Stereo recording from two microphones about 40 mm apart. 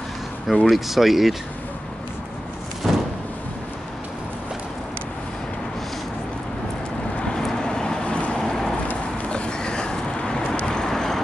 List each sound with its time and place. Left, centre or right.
0.5 s speech: centre
2.8 s a sound: centre
7.2 s vehicle: centre
8.1 s vehicle: left
8.4 s vehicle: centre
10.8 s vehicle: centre